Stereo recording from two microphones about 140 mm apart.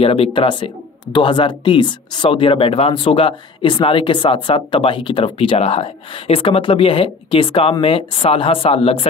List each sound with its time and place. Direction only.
0.0 s speech: 40° left (ahead or behind)